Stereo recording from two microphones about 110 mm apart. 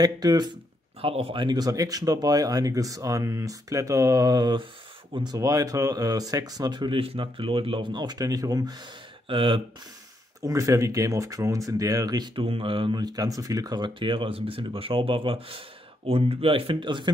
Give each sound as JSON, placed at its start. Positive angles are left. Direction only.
{"t": 0.0, "sound": "speech", "side_deg": -35}
{"t": 1.0, "sound": "speech", "side_deg": -60}
{"t": 1.4, "sound": "speech", "side_deg": -40}
{"t": 9.3, "sound": "speech", "side_deg": -50}
{"t": 10.4, "sound": "speech", "side_deg": -30}
{"t": 12.4, "sound": "speech", "side_deg": -55}
{"t": 13.0, "sound": "speech", "side_deg": -35}